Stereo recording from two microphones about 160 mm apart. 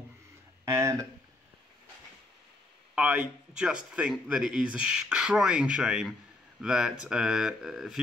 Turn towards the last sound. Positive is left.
turn(degrees=0)  # may be behind; listen again after turning